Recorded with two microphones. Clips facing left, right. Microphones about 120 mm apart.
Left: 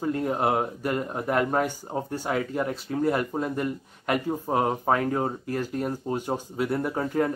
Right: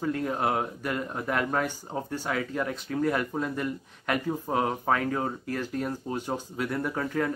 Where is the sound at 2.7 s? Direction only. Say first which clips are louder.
Left 1 dB; 30° left (ahead or behind).